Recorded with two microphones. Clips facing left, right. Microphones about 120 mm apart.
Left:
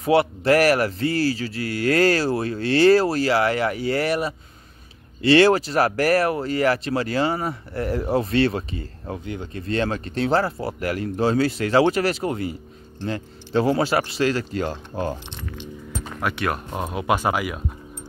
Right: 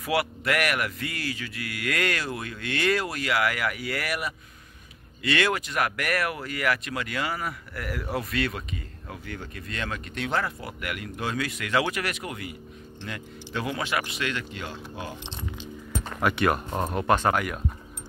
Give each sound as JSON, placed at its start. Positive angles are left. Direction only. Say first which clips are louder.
{"t": 0.0, "sound": "speech", "louder": "left 8 dB", "side_deg": 25}
{"t": 16.0, "sound": "speech", "louder": "right 1 dB", "side_deg": 0}